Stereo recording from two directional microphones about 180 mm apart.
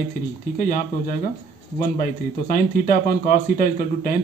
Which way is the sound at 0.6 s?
50° left (ahead or behind).